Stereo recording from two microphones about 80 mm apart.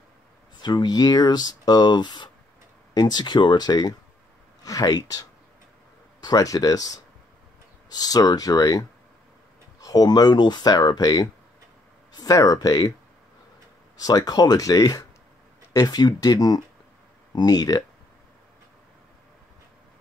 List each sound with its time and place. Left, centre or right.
0.6 s speech: left
14.0 s speech: left